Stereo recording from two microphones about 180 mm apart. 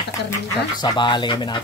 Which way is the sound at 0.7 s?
25° left (ahead or behind).